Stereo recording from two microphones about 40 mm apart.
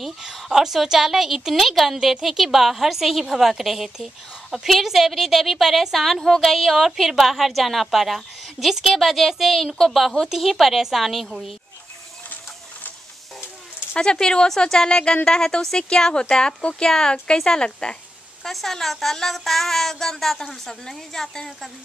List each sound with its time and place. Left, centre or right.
0.0 s a woman's voice: centre
13.9 s a woman's voice: centre
18.4 s a woman's voice: centre